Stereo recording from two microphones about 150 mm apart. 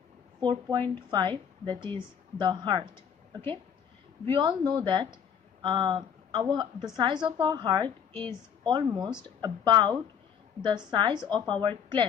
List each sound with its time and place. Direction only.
0.4 s a woman's voice: 30° right (ahead or behind)
4.3 s a woman's voice: 30° right (ahead or behind)
7.8 s a woman's voice: 15° left (ahead or behind)
8.3 s a woman's voice: 30° right (ahead or behind)